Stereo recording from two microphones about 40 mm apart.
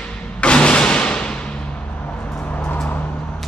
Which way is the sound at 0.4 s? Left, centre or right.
Left.